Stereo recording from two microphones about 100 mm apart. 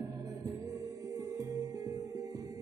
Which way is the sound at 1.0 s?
35° right (ahead or behind).